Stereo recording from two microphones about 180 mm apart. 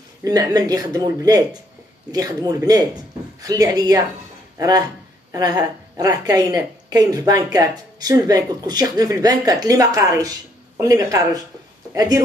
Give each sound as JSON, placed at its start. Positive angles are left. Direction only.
{"t": 0.2, "sound": "a woman's voice", "side_deg": -20}